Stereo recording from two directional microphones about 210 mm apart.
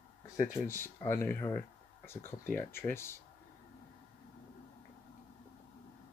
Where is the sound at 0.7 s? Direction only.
10° left (ahead or behind).